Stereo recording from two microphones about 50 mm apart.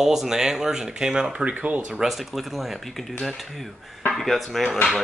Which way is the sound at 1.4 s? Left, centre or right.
Right.